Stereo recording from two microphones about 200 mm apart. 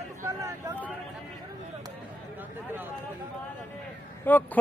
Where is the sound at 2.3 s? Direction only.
10° right (ahead or behind).